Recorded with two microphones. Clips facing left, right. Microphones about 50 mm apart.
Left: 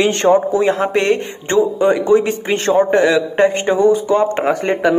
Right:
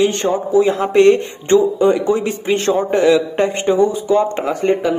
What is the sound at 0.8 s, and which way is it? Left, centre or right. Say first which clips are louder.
Speech: right 4 dB; left.